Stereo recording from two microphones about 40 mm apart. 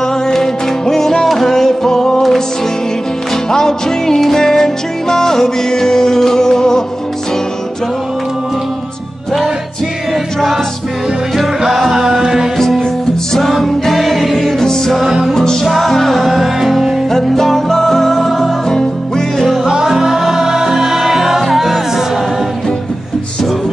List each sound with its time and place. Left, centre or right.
0.0 s music: centre
3.4 s music: centre
11.3 s music: centre
12.5 s music: centre
14.6 s music: centre
15.0 s music: centre
15.3 s music: centre
15.6 s music: centre
17.1 s music: centre
19.6 s music: centre